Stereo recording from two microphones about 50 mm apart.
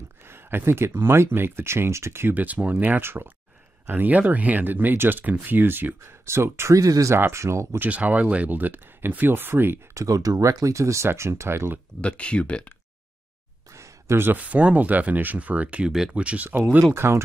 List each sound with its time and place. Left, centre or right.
0.3 s speech: right
2.3 s speech: right
3.0 s speech: right
3.9 s speech: right
6.2 s speech: right
7.9 s speech: right
8.5 s speech: right
9.9 s speech: right
11.1 s speech: right
12.0 s speech: left
13.7 s a sound: right
14.4 s speech: right
16.9 s speech: right